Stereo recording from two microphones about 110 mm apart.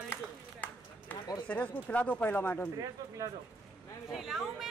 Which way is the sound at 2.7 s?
30° right (ahead or behind).